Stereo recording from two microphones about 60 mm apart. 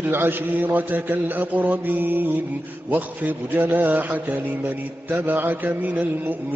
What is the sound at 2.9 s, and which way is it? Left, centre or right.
A man's voice, right.